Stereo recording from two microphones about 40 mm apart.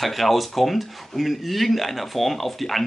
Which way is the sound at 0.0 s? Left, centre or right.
Centre.